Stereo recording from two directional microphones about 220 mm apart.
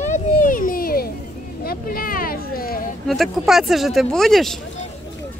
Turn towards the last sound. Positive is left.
turn(degrees=0)  # may be behind; listen again after turning